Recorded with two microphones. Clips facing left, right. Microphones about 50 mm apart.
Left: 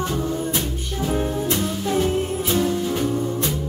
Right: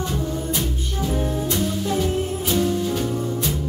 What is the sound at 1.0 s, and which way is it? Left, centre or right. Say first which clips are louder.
Music: left 1 dB; left.